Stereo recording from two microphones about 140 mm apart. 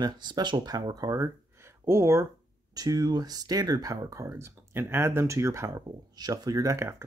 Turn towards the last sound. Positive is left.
turn(degrees=-20)  # may be behind; listen again after turning